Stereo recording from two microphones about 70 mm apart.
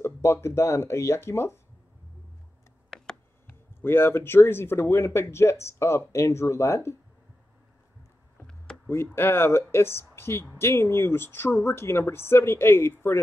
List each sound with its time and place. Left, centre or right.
0.0 s speech: left
3.4 s speech: left
8.8 s speech: left